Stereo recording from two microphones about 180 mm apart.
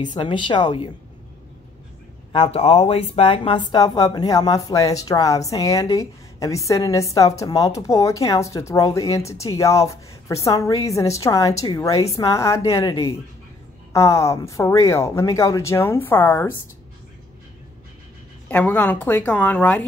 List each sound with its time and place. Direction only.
0.0 s speech: 25° left (ahead or behind)
2.3 s speech: 35° left (ahead or behind); by 16.5 s 10° left (ahead or behind)
18.5 s speech: 10° left (ahead or behind)